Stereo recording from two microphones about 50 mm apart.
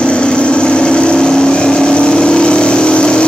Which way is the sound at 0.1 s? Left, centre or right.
Left.